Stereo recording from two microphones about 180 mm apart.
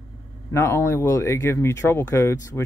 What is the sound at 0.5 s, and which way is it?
Speech, 15° left (ahead or behind).